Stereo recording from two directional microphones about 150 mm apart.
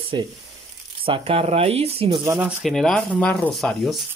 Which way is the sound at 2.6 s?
Centre (ahead or behind).